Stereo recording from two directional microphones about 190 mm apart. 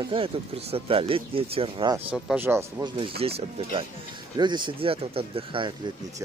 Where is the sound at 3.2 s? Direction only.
30° right (ahead or behind).